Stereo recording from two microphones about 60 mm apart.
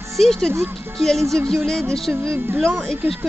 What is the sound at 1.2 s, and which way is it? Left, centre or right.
Speech, right.